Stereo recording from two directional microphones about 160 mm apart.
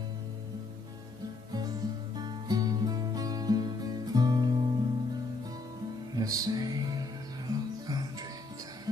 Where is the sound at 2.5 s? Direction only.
25° right (ahead or behind).